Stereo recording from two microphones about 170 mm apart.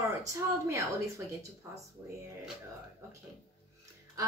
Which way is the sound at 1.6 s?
15° right (ahead or behind).